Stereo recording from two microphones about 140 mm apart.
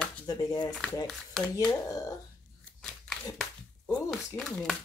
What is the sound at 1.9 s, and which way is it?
Speech, 25° left (ahead or behind).